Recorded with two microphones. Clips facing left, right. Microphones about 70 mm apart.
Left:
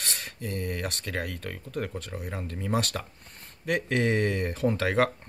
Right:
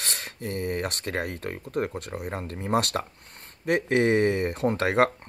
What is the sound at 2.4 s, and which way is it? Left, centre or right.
Speech, right.